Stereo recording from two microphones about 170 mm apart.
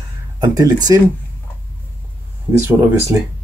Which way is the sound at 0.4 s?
25° right (ahead or behind).